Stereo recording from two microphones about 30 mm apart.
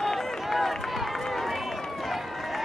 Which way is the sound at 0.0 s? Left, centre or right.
Centre.